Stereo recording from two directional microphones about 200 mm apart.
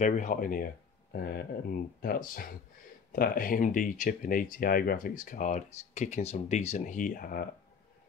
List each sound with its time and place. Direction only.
0.0 s speech: 40° left (ahead or behind)